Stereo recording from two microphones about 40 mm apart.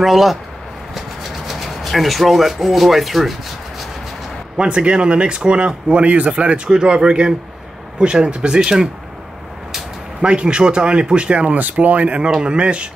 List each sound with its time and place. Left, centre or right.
0.0 s speech: centre
1.5 s speech: centre
4.6 s speech: right
10.2 s speech: right
12.4 s speech: right